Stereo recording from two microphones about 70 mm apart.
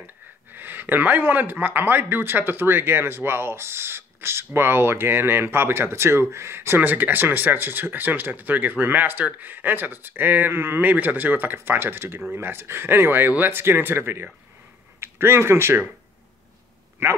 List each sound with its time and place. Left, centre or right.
0.6 s a man's voice: right
17.0 s a man's voice: right